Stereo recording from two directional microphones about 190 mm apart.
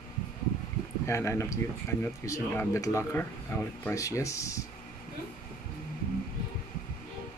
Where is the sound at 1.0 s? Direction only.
15° left (ahead or behind).